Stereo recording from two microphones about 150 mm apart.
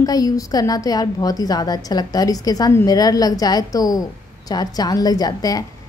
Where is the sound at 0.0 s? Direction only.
25° left (ahead or behind).